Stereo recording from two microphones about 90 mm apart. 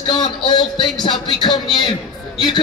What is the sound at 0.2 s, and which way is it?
A man's voice, 65° left (ahead or behind).